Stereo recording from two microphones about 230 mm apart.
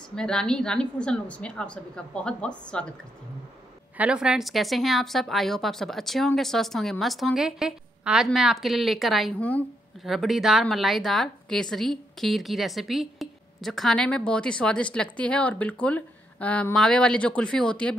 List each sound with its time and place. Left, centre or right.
0.1 s a woman's voice: centre
3.9 s a woman's voice: centre